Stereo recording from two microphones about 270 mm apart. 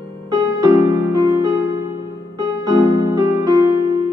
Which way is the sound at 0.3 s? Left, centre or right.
Centre.